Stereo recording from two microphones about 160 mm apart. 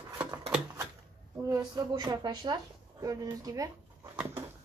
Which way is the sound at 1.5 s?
25° right (ahead or behind).